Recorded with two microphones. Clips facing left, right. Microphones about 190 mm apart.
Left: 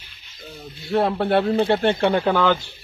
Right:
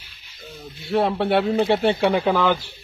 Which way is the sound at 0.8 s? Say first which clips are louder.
Even; centre (ahead or behind).